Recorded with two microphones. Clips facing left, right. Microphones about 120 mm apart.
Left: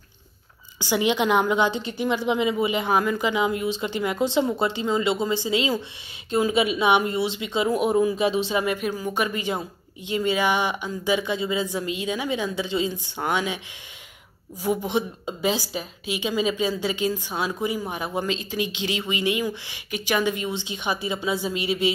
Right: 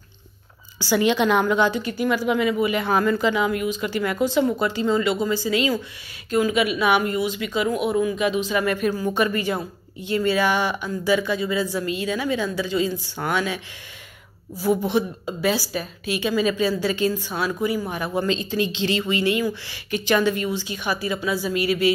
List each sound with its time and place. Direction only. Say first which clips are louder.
0.7 s a woman's voice: right 3 dB; 15° left (ahead or behind)
8.6 s speech: right 3 dB; 10° left (ahead or behind)
14.6 s speech: right 3 dB; 15° left (ahead or behind)
18.3 s speech: right 4 dB; 5° left (ahead or behind)